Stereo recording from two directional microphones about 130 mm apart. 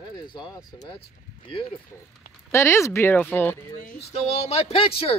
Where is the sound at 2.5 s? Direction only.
20° left (ahead or behind).